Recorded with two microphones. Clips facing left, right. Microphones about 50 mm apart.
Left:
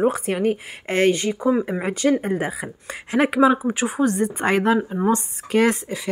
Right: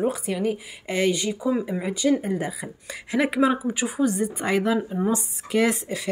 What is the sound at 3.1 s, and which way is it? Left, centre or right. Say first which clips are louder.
Speech: left 4 dB; left.